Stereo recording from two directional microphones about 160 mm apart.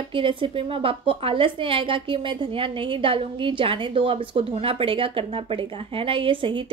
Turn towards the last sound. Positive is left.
turn(degrees=-30)  # may be behind; listen again after turning